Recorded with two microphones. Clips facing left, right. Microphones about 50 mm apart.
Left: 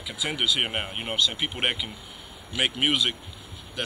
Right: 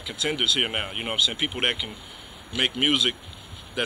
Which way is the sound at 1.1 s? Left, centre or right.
Centre.